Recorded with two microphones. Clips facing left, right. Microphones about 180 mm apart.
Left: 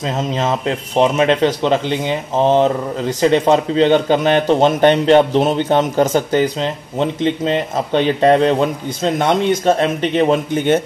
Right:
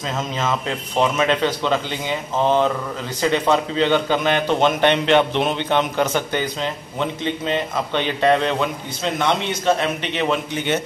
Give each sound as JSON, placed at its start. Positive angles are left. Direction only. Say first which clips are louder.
{"t": 0.0, "sound": "a man's voice", "louder": "left 5 dB", "side_deg": 35}